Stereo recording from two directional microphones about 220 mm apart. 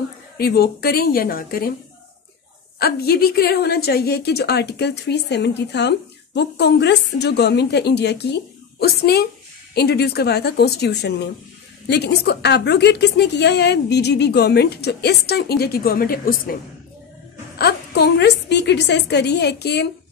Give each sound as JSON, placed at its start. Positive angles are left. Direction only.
{"t": 0.4, "sound": "a woman's voice", "side_deg": 45}
{"t": 2.8, "sound": "a woman's voice", "side_deg": 45}
{"t": 17.6, "sound": "a woman's voice", "side_deg": 45}